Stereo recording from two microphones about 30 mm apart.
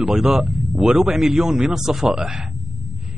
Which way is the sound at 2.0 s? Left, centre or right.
Right.